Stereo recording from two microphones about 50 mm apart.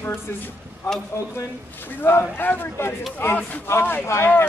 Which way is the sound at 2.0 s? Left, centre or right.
Left.